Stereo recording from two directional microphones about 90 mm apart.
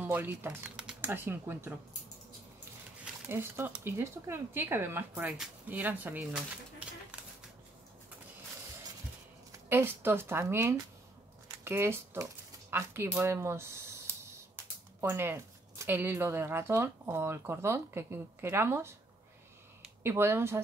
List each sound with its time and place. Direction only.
0.0 s speech: 20° right (ahead or behind)
3.3 s speech: 25° right (ahead or behind)
9.7 s speech: 25° right (ahead or behind)
20.0 s speech: 25° right (ahead or behind)